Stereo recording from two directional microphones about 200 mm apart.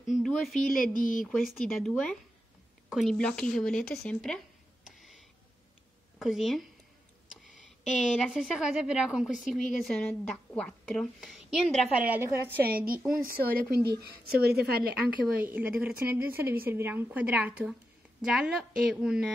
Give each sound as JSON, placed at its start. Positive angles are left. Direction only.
{"t": 0.1, "sound": "speech", "side_deg": 0}
{"t": 0.7, "sound": "a sound", "side_deg": 45}
{"t": 1.5, "sound": "a woman's voice", "side_deg": 0}
{"t": 4.8, "sound": "a sound", "side_deg": 0}
{"t": 6.1, "sound": "a woman's voice", "side_deg": 0}
{"t": 8.0, "sound": "a woman's voice", "side_deg": -5}
{"t": 12.6, "sound": "a woman's voice", "side_deg": -45}
{"t": 15.3, "sound": "a woman's voice", "side_deg": -10}